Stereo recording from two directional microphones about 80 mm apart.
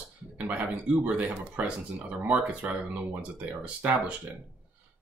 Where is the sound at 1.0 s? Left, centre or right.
Centre.